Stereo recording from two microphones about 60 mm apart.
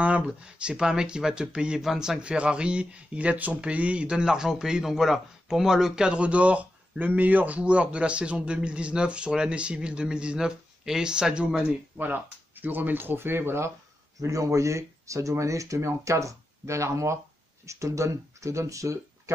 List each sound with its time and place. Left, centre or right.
0.3 s speech: centre
12.0 s speech: right
14.2 s speech: right